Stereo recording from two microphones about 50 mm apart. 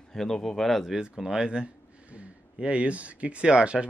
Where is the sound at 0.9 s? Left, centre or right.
Centre.